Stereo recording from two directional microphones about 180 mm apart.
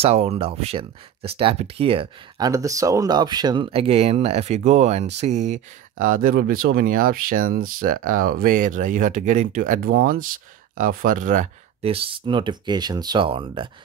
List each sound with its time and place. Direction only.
0.0 s speech: 35° right (ahead or behind)
11.8 s speech: 30° right (ahead or behind)